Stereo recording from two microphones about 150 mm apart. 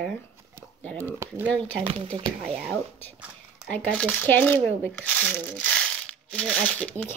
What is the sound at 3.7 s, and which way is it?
Speech, 10° left (ahead or behind).